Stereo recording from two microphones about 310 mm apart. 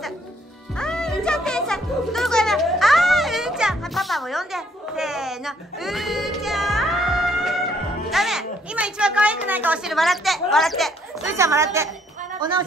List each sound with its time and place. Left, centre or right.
0.7 s music: centre
8.1 s speech: centre